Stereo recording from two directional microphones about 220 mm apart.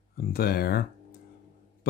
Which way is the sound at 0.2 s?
45° left (ahead or behind).